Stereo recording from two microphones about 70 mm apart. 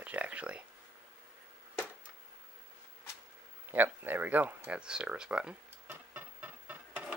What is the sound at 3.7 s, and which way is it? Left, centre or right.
Speech, right.